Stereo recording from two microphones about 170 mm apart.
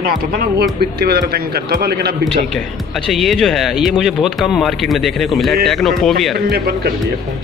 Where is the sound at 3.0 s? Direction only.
Centre (ahead or behind).